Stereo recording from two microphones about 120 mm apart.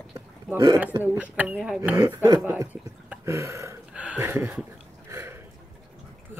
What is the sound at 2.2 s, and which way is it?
Speech, 30° right (ahead or behind).